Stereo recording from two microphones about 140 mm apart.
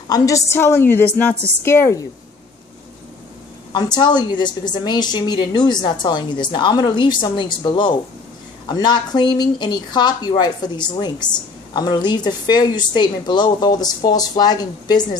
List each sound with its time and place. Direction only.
0.1 s a woman's voice: 20° left (ahead or behind)
3.7 s a woman's voice: 30° left (ahead or behind)